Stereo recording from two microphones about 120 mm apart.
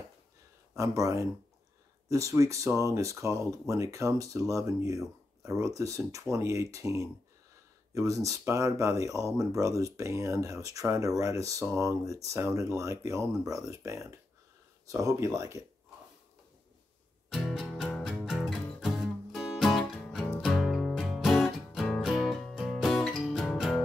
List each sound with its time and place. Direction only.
0.7 s speech: 25° right (ahead or behind)
17.3 s music: centre (ahead or behind)